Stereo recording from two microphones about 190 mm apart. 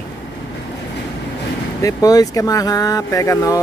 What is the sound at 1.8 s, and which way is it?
Speech, 20° left (ahead or behind).